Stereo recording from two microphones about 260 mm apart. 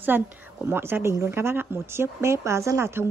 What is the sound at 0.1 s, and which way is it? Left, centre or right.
A woman's voice, centre.